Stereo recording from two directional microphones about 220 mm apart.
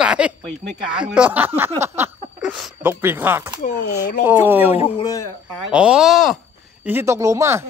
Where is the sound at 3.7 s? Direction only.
50° left (ahead or behind).